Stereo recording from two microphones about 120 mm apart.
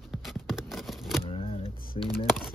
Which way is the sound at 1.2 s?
50° left (ahead or behind).